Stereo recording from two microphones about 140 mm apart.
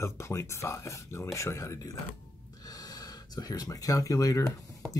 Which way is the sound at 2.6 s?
25° left (ahead or behind).